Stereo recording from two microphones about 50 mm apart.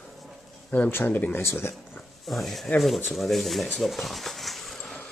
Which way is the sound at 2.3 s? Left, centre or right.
Centre.